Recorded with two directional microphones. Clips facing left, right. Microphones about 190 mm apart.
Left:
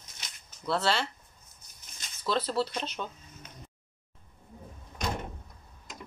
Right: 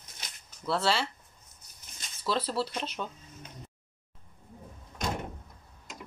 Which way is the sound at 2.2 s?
5° right (ahead or behind).